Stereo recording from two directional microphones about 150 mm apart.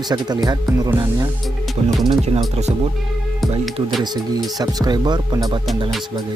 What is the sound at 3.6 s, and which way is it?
Speech, centre (ahead or behind).